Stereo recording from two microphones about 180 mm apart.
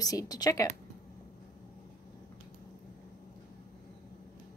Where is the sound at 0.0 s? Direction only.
20° left (ahead or behind).